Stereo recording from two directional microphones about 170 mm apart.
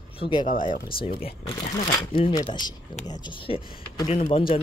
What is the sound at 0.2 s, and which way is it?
Speech, 30° left (ahead or behind).